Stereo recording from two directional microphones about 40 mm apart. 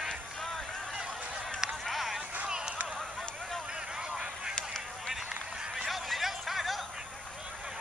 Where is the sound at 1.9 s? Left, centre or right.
Centre.